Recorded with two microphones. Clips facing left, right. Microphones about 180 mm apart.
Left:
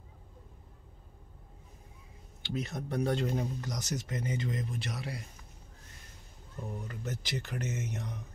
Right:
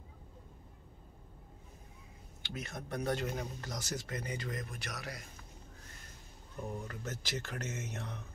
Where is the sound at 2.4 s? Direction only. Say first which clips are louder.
Left 7 dB; 30° left (ahead or behind).